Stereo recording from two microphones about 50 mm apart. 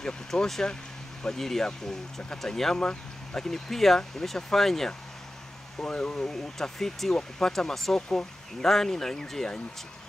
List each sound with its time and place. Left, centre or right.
0.0 s speech: centre
5.8 s speech: centre